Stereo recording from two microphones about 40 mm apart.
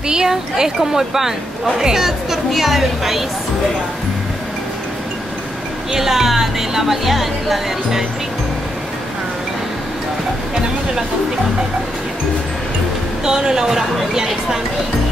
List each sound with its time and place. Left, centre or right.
0.1 s a woman's voice: centre
5.9 s speech: centre
13.2 s speech: centre